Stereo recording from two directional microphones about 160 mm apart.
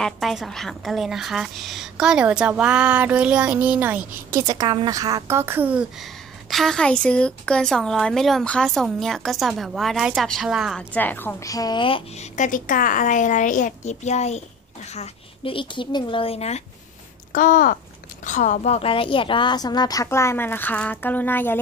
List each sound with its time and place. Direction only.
0.0 s a woman's voice: centre (ahead or behind)
10.8 s a woman's voice: 10° left (ahead or behind); by 12.3 s 35° left (ahead or behind)
12.4 s a woman's voice: 55° left (ahead or behind)
17.3 s a woman's voice: 55° left (ahead or behind); by 21.5 s 10° left (ahead or behind)